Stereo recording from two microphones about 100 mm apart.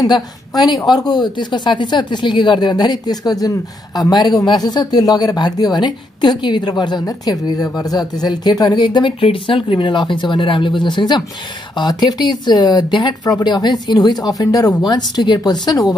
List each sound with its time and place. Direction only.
0.6 s speech: 45° left (ahead or behind)